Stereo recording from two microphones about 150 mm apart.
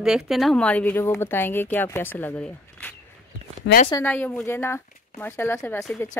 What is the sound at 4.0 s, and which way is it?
Speech, 10° left (ahead or behind).